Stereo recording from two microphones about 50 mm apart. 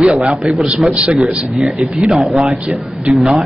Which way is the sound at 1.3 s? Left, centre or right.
Right.